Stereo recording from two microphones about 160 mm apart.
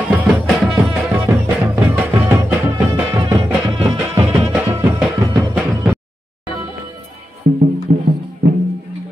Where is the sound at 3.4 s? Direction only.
Centre (ahead or behind); by 5.3 s 20° right (ahead or behind).